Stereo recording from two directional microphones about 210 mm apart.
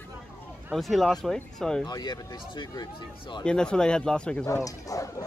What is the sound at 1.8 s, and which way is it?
Speech, 20° left (ahead or behind).